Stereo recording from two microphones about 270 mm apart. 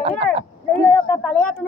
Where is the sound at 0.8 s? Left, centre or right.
Centre.